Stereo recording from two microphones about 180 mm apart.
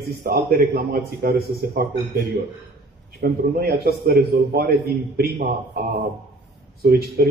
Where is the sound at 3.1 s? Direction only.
60° right (ahead or behind).